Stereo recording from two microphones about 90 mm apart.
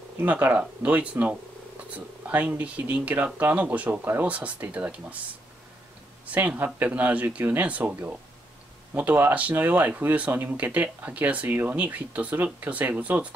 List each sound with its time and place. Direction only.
0.2 s speech: 20° right (ahead or behind)
6.3 s speech: 20° right (ahead or behind)